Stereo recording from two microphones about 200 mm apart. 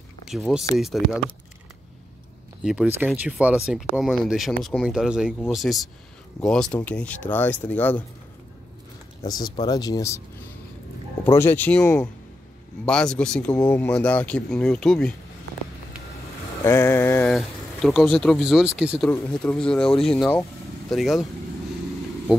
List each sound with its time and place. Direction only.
0.3 s speech: centre (ahead or behind)
2.6 s speech: 5° right (ahead or behind)
9.2 s speech: 20° left (ahead or behind)
11.2 s speech: 10° left (ahead or behind)
16.6 s speech: 10° left (ahead or behind)